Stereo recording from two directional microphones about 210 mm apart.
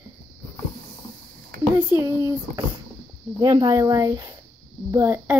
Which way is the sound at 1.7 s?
10° right (ahead or behind).